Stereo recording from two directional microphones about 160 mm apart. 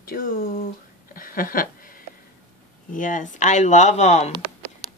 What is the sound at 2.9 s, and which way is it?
Speech, 55° left (ahead or behind).